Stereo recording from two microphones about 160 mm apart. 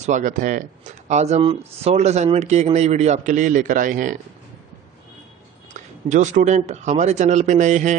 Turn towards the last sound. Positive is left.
turn(degrees=-50)  # may be behind; listen again after turning